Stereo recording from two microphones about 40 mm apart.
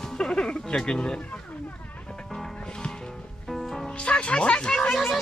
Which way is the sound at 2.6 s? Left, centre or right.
Centre.